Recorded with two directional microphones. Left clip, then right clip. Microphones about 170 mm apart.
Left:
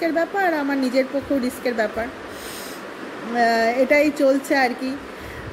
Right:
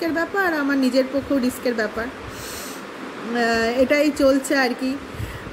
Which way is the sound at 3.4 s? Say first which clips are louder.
Left 2 dB; 15° right (ahead or behind).